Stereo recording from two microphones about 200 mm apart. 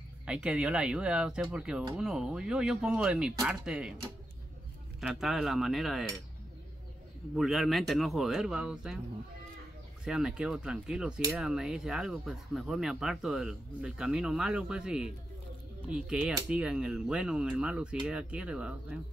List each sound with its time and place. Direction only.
0.2 s speech: 5° right (ahead or behind)
5.0 s speech: centre (ahead or behind)
7.3 s speech: centre (ahead or behind)
10.0 s speech: 5° right (ahead or behind)